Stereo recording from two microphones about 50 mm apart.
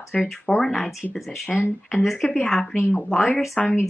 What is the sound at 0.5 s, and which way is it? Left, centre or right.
Speech, centre.